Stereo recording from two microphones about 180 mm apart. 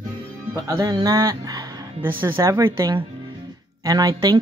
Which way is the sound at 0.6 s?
20° right (ahead or behind).